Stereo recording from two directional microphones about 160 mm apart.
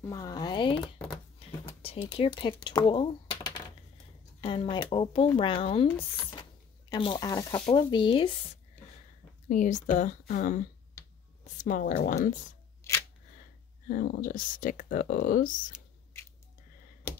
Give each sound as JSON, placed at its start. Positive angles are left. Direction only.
{"t": 0.0, "sound": "speech", "side_deg": 20}
{"t": 6.9, "sound": "speech", "side_deg": 30}
{"t": 9.5, "sound": "speech", "side_deg": 50}
{"t": 12.8, "sound": "scissors", "side_deg": 15}
{"t": 13.8, "sound": "speech", "side_deg": 65}